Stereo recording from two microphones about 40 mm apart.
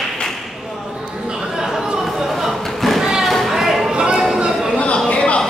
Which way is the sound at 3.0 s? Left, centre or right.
Centre.